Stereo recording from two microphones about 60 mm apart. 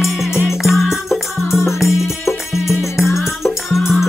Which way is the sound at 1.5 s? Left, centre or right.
Left.